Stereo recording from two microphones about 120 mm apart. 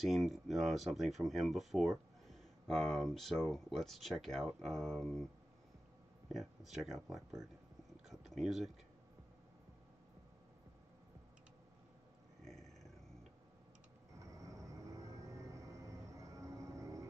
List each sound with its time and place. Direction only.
0.0 s speech: centre (ahead or behind)
6.3 s speech: centre (ahead or behind)
12.4 s a sound: 5° left (ahead or behind)
14.2 s music: 25° right (ahead or behind)